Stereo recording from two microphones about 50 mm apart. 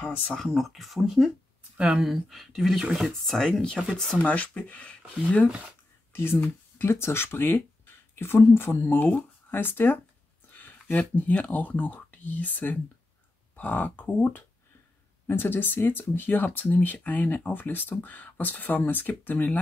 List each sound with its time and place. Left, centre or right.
0.6 s speech: centre
3.3 s speech: centre
4.2 s speech: left
6.1 s speech: left
6.9 s speech: left
10.5 s a sound: left
11.5 s speech: left